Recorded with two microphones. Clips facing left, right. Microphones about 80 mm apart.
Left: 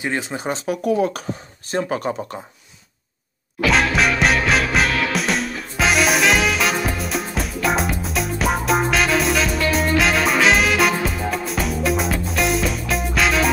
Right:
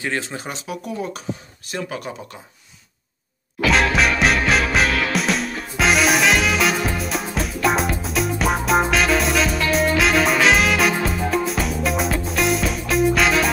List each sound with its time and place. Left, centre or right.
0.0 s speech: centre
0.8 s speech: left
1.7 s speech: left
3.6 s music: centre